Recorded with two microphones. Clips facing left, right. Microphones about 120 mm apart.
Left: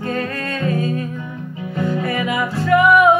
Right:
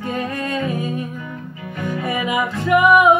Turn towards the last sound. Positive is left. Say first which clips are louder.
# even
turn(degrees=-15)  # may be behind; listen again after turning